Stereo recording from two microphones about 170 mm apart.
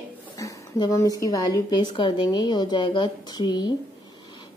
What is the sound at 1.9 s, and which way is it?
A woman's voice, 25° left (ahead or behind).